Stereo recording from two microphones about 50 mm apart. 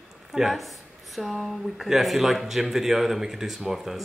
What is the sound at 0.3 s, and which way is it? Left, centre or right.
Speech, centre.